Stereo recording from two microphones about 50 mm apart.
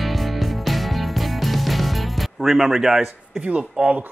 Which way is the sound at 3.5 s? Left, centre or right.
Right.